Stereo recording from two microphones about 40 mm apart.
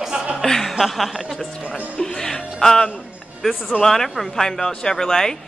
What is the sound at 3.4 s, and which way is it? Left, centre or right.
Speech, centre.